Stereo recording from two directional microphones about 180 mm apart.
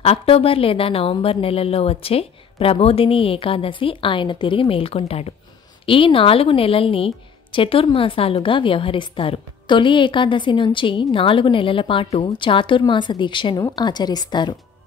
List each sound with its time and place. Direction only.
0.0 s a woman's voice: 35° left (ahead or behind)